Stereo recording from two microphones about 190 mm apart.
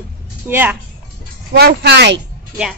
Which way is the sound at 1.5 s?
55° right (ahead or behind).